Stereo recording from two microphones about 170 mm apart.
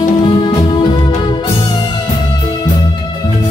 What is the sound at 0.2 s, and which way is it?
Music, 25° left (ahead or behind).